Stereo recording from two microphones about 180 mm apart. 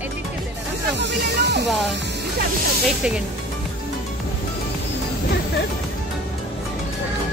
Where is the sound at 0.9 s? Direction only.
70° right (ahead or behind).